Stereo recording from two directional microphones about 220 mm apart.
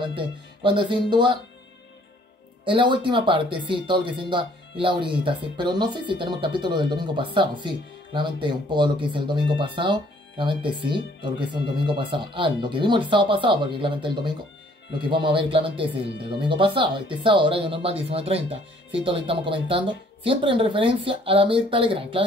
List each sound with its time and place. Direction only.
0.0 s speech: 20° right (ahead or behind)
2.6 s speech: 20° right (ahead or behind)